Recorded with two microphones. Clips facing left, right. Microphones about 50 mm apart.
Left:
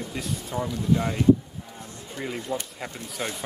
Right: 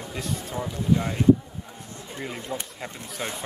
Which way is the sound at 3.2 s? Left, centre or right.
Centre.